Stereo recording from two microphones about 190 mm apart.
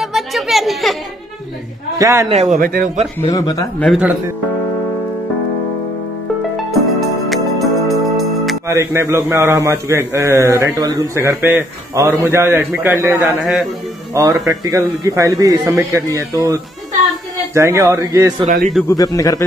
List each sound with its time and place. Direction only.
0.0 s a sound: centre (ahead or behind)
2.0 s a man's voice: 15° right (ahead or behind)
2.2 s a man's voice: 35° right (ahead or behind)
2.6 s a man's voice: 50° right (ahead or behind)
3.2 s speech: 15° left (ahead or behind)
3.8 s speech: centre (ahead or behind)
6.7 s music: centre (ahead or behind)
8.6 s a man's voice: 15° right (ahead or behind)
13.4 s speech: centre (ahead or behind)
14.4 s a man's voice: 15° right (ahead or behind)
18.9 s speech: 20° left (ahead or behind)